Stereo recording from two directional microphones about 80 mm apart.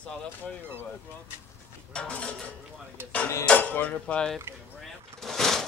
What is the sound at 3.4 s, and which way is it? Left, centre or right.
Speech, left.